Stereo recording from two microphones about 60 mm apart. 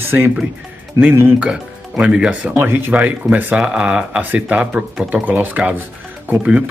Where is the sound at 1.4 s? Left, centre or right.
Centre.